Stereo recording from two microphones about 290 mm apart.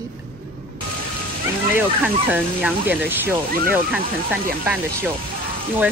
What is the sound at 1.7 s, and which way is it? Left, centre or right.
Speech, centre.